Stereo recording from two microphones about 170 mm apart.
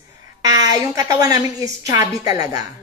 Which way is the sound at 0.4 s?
20° right (ahead or behind).